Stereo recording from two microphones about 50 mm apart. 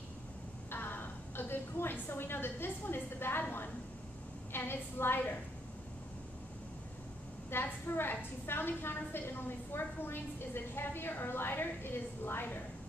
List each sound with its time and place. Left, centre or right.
0.7 s a sound: left
4.5 s a woman's voice: left
7.5 s a woman's voice: left